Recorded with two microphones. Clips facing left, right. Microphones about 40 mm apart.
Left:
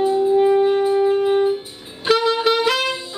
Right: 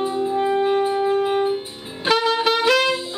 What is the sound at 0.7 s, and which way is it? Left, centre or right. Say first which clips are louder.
Wind instrument: left 3 dB; centre.